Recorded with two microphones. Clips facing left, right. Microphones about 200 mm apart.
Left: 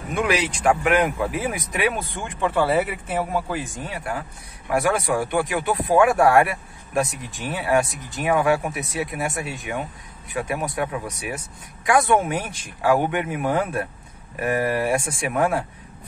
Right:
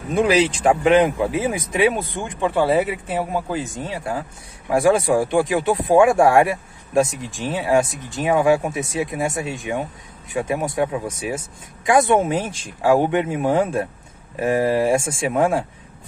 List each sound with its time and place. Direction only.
0.1 s speech: 30° right (ahead or behind)